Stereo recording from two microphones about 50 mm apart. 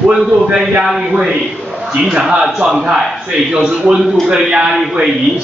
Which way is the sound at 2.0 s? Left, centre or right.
Centre.